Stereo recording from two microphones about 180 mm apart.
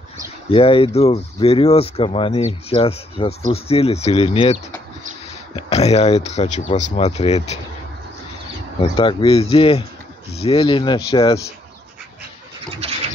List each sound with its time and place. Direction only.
0.5 s speech: 30° left (ahead or behind)
5.6 s speech: 35° left (ahead or behind)
8.9 s speech: 30° left (ahead or behind)